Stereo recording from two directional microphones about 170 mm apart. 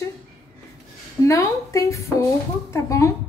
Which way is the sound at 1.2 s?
20° left (ahead or behind).